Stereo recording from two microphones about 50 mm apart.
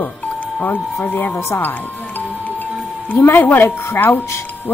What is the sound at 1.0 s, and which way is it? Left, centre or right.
Speech, left.